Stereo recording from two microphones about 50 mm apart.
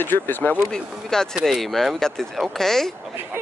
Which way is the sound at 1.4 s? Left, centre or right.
Centre.